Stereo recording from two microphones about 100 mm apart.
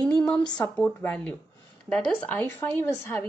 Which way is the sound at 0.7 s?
15° left (ahead or behind).